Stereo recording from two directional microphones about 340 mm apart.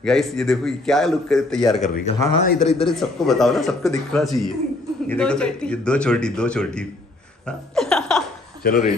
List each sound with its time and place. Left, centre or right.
0.0 s speech: centre
1.8 s a man's voice: centre
2.9 s speech: centre
7.4 s a sound: centre
8.6 s a man's voice: left